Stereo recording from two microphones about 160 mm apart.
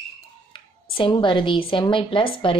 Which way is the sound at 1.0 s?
30° left (ahead or behind).